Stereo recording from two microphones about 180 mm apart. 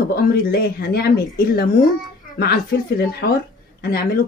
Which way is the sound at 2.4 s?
60° left (ahead or behind).